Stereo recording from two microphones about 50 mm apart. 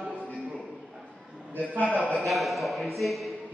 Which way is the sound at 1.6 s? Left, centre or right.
Left.